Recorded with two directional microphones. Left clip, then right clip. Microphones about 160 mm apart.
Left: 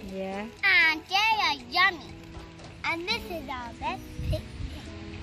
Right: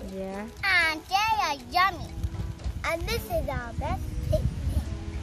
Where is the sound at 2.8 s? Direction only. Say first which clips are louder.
Even; 50° right (ahead or behind).